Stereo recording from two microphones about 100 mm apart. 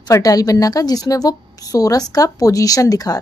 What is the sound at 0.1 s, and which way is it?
A woman's voice, 35° left (ahead or behind).